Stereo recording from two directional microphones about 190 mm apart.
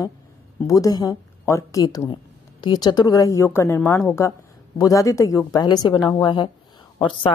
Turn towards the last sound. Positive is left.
turn(degrees=25)  # may be behind; listen again after turning